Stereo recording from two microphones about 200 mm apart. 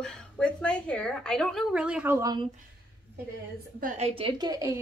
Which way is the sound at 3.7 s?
40° right (ahead or behind).